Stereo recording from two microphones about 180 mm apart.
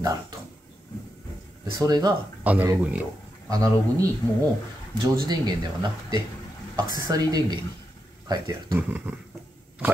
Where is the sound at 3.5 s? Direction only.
20° right (ahead or behind).